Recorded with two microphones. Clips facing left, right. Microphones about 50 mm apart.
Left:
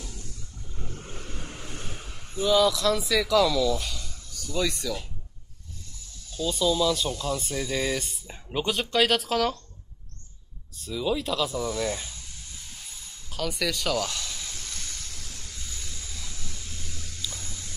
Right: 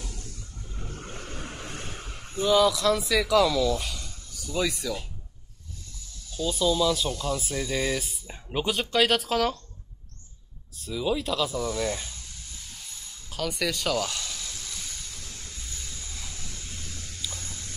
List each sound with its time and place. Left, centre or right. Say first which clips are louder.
0.9 s vehicle: right 2 dB; right
1.6 s a sound: right 2 dB; right
2.5 s speech: right 1 dB; centre
6.3 s speech: even; centre
10.8 s speech: even; centre
13.3 s speech: even; centre